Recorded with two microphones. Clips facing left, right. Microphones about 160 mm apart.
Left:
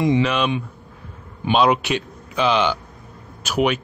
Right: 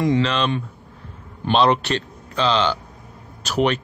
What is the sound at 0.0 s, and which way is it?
A man's voice, 15° left (ahead or behind).